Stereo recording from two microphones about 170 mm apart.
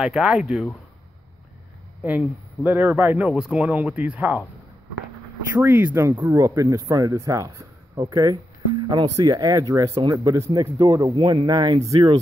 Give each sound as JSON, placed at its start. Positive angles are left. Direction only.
{"t": 0.0, "sound": "speech", "side_deg": 0}
{"t": 2.0, "sound": "speech", "side_deg": -10}
{"t": 5.5, "sound": "speech", "side_deg": -10}